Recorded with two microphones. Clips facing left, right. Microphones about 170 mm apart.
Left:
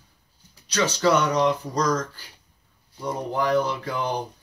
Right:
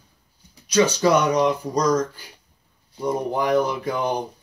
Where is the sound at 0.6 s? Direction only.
10° right (ahead or behind).